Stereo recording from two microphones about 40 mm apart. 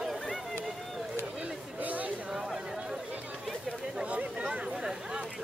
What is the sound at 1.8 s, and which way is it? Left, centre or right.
Chatter, right.